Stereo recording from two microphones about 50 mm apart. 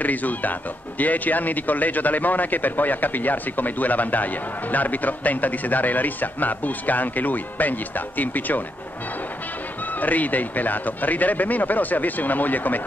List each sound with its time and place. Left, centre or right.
0.0 s speech: left
9.9 s speech: left